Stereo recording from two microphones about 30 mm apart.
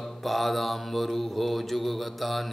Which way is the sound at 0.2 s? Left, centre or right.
Centre.